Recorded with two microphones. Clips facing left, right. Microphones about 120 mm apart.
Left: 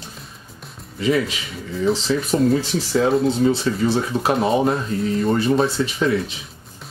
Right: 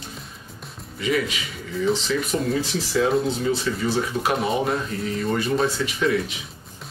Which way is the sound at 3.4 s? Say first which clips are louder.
Left 5 dB; 30° left (ahead or behind).